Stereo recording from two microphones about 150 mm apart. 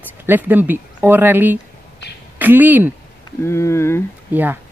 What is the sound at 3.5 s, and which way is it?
Speech, 20° left (ahead or behind).